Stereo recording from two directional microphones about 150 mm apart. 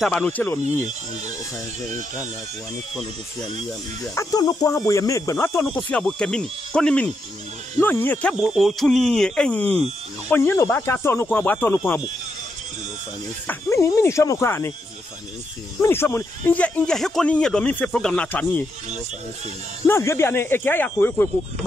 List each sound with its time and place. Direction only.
0.0 s speech: 5° left (ahead or behind)
4.0 s speech: 20° left (ahead or behind)
8.4 s speech: centre (ahead or behind)
13.5 s speech: 20° left (ahead or behind)
15.8 s speech: 15° left (ahead or behind)
19.9 s speech: 15° left (ahead or behind)